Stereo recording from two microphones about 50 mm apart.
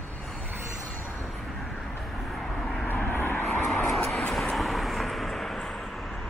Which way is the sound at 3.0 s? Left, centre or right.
Left.